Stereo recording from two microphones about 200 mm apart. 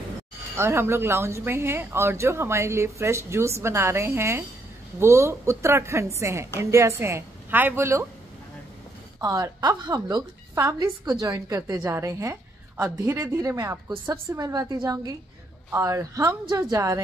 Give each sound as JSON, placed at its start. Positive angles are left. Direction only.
{"t": 0.6, "sound": "a woman's voice", "side_deg": -10}
{"t": 9.2, "sound": "a woman's voice", "side_deg": -20}